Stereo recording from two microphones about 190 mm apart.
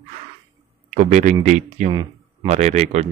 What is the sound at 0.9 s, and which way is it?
Speech, 35° right (ahead or behind).